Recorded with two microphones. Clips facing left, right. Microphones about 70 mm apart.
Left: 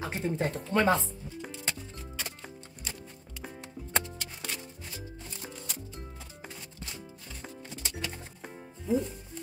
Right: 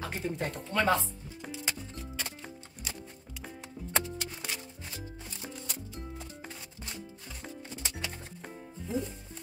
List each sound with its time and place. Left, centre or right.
0.0 s music: centre
0.7 s speech: centre
1.0 s music: centre
7.4 s music: centre